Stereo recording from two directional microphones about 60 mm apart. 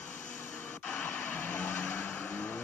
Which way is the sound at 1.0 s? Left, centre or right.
Left.